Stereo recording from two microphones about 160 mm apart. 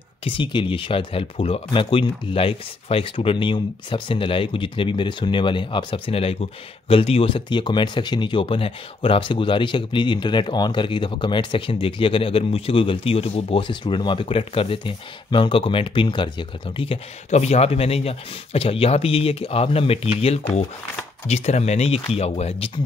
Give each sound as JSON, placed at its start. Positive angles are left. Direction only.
{"t": 0.2, "sound": "speech", "side_deg": 30}